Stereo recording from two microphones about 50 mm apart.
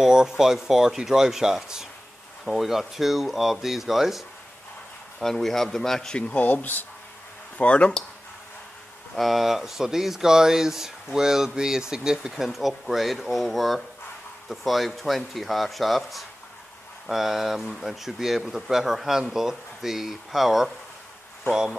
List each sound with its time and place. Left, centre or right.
0.0 s speech: centre
5.2 s speech: centre
6.1 s speech: left
6.4 s speech: left
7.5 s speech: left
9.1 s speech: centre